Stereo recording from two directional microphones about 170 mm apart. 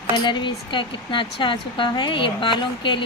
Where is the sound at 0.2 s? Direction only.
30° left (ahead or behind).